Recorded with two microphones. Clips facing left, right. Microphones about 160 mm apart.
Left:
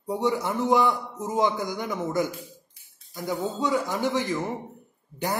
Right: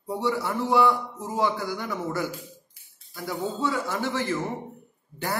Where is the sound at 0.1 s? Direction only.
20° left (ahead or behind).